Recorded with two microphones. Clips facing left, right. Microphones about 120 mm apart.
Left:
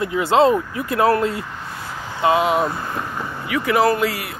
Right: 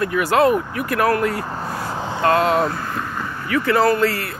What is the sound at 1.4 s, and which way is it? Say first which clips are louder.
Vehicle: right 6 dB; 35° right (ahead or behind).